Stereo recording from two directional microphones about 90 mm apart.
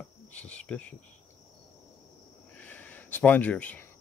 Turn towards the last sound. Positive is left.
turn(degrees=15)  # may be behind; listen again after turning